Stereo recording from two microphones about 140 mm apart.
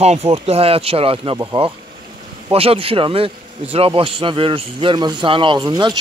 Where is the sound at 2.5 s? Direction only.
45° right (ahead or behind).